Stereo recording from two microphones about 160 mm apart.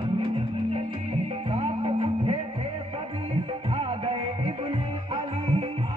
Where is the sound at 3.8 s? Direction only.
35° right (ahead or behind).